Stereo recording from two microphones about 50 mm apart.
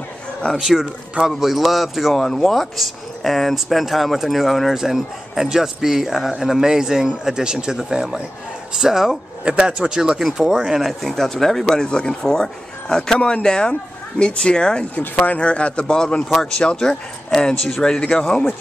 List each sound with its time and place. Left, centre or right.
0.6 s speech: centre
9.4 s speech: centre
10.8 s speech: centre